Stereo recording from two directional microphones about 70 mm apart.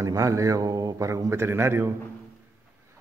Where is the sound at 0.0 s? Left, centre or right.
Right.